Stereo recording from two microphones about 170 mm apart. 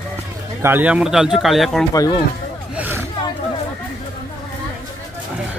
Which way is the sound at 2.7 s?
10° right (ahead or behind).